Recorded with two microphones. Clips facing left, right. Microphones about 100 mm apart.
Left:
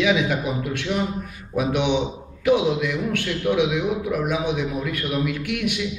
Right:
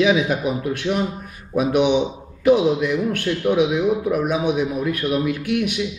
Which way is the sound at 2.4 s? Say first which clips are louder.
Right 3 dB; 25° right (ahead or behind).